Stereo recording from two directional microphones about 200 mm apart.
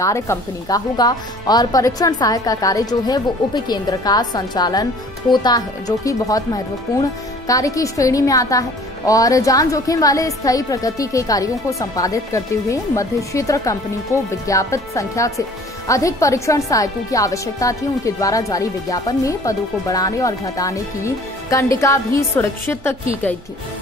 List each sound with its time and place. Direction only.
0.0 s speech: 15° left (ahead or behind)